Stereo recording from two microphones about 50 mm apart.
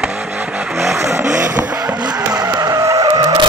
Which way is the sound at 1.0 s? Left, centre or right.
Right.